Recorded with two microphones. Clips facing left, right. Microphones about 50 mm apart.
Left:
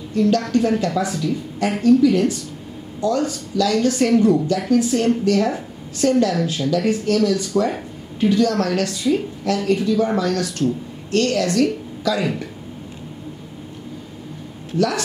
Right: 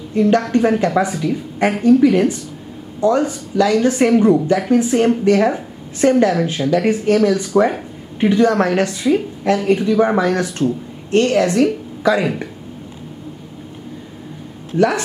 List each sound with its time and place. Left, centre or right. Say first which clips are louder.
0.1 s a woman's voice: right 3 dB; right
14.8 s a woman's voice: right 4 dB; right